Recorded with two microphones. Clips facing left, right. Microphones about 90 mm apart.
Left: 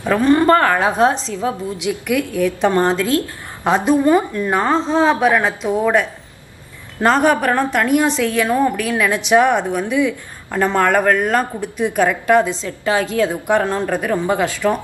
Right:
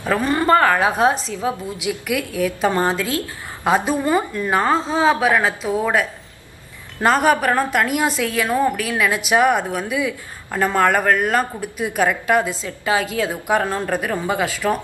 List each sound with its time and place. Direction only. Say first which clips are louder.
0.1 s a woman's voice: left 4 dB; 5° right (ahead or behind)
7.2 s a woman's voice: left 1 dB; 10° right (ahead or behind)